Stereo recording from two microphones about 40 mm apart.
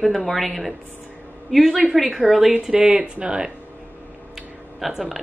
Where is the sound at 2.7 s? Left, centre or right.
Right.